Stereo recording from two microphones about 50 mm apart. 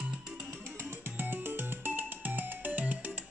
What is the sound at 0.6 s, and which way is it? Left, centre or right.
Music, right.